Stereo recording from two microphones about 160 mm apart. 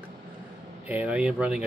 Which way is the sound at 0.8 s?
10° right (ahead or behind).